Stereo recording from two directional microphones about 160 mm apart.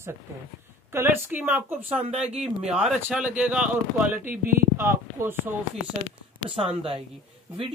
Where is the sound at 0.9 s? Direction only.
15° right (ahead or behind).